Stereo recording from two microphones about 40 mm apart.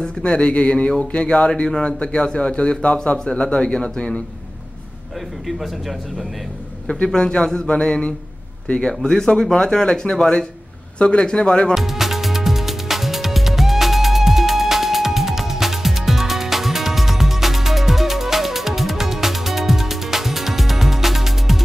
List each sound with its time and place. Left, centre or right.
0.2 s a man's voice: left
7.1 s a man's voice: left
10.1 s a man's voice: left
11.7 s music: centre